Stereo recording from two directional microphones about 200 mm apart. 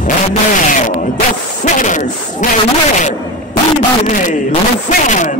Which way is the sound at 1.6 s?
40° left (ahead or behind).